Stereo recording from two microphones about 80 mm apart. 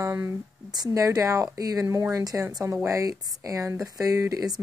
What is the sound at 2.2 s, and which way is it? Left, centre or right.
A woman's voice, right.